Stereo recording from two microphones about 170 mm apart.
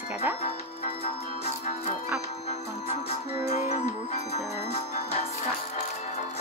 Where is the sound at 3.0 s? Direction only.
40° left (ahead or behind).